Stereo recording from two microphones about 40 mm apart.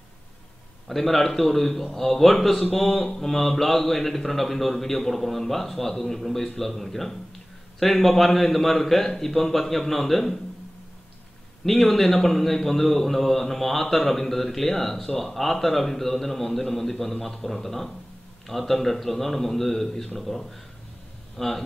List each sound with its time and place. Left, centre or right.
0.8 s speech: centre
11.6 s speech: centre